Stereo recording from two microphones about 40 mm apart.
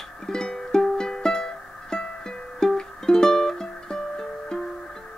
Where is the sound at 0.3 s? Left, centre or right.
Centre.